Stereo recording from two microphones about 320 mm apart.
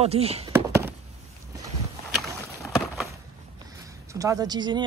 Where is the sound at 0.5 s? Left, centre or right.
Centre.